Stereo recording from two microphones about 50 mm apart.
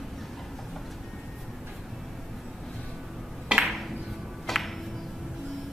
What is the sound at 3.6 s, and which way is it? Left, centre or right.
Music, centre.